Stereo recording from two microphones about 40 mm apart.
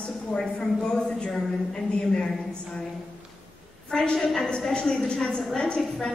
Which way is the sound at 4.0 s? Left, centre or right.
Left.